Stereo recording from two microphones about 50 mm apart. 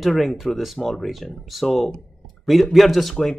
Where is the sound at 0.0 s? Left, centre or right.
Centre.